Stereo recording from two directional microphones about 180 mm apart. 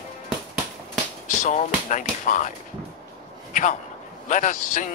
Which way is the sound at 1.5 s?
45° left (ahead or behind).